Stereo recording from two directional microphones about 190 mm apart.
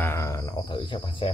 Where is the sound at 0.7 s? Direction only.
25° left (ahead or behind).